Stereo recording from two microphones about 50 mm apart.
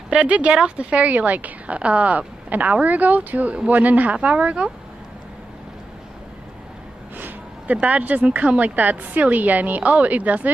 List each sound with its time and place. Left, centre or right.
0.1 s speech: right
7.2 s speech: right